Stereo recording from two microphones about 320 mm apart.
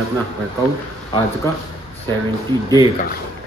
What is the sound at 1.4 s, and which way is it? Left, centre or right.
A man's voice, centre.